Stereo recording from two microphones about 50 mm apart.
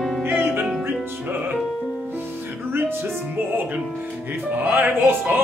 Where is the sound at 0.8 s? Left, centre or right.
Right.